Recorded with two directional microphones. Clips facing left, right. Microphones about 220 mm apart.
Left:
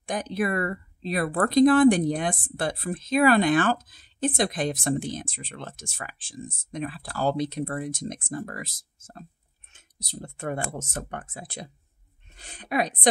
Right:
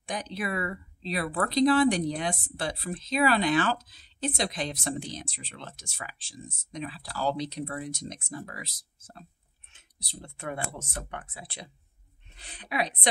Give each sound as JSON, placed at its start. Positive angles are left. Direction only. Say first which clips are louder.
{"t": 0.0, "sound": "speech", "louder": "left 6 dB", "side_deg": 50}